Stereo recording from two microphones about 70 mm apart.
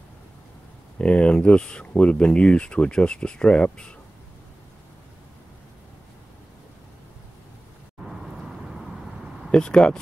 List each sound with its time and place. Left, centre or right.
0.9 s speech: centre
9.5 s speech: centre